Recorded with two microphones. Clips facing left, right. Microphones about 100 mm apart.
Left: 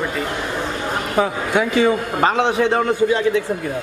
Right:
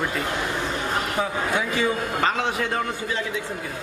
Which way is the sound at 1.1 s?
75° left (ahead or behind).